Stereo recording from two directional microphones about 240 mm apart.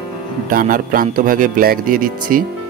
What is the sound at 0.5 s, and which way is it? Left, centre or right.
Speech, right.